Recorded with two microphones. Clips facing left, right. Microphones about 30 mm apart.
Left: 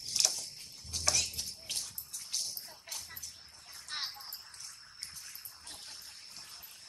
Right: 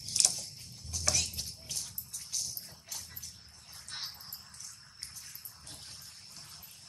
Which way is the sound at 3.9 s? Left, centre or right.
Centre.